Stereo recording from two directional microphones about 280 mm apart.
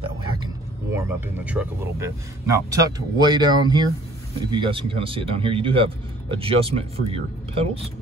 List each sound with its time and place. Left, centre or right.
0.9 s speech: centre